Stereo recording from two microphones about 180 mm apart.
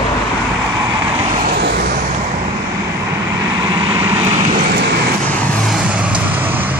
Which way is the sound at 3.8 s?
20° right (ahead or behind).